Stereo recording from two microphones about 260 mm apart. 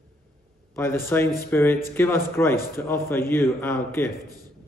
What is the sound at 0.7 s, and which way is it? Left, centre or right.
Speech, centre.